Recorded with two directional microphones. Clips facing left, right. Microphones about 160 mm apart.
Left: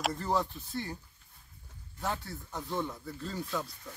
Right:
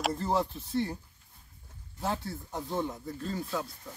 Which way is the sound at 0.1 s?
25° right (ahead or behind).